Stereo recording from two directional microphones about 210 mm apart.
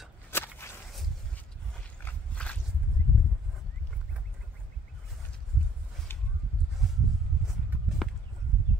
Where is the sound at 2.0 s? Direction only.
5° left (ahead or behind).